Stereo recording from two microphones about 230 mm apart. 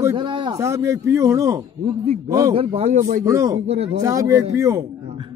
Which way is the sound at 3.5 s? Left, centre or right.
Right.